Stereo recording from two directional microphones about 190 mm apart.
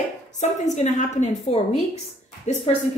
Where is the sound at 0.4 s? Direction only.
40° left (ahead or behind).